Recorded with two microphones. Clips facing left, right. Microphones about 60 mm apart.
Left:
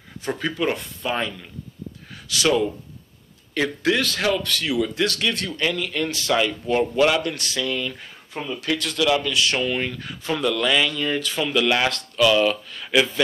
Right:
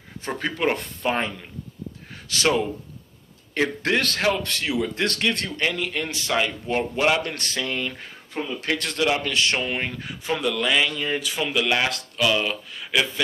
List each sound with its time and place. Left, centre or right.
0.4 s speech: right
4.2 s a man's voice: right; by 13.2 s centre